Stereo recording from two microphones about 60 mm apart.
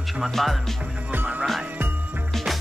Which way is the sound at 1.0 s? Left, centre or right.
Right.